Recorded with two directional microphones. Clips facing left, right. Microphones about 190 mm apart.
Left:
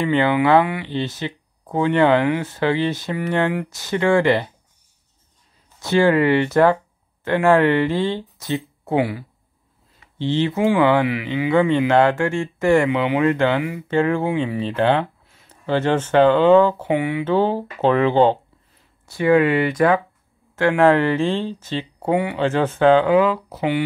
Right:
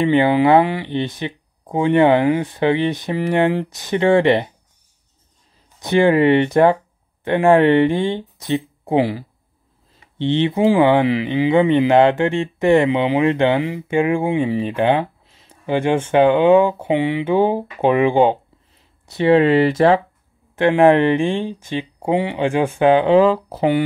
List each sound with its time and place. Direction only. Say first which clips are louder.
0.0 s speech: right 3 dB; 20° right (ahead or behind)
5.8 s speech: right 2 dB; 20° right (ahead or behind)
8.9 s speech: right 3 dB; 30° right (ahead or behind)
9.9 s a sound: right 2 dB; 20° right (ahead or behind)
10.5 s speech: right 3 dB; 30° right (ahead or behind)
13.8 s speech: right 1 dB; 15° right (ahead or behind)
19.0 s speech: right 2 dB; 25° right (ahead or behind)
23.1 s speech: right 4 dB; 30° right (ahead or behind)